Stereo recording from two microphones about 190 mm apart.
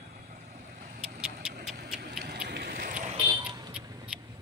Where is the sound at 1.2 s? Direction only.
5° right (ahead or behind).